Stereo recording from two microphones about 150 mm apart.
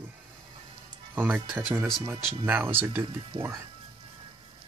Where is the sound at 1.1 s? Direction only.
15° right (ahead or behind).